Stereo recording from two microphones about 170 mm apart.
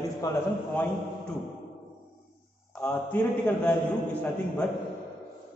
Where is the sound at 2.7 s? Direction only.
10° left (ahead or behind).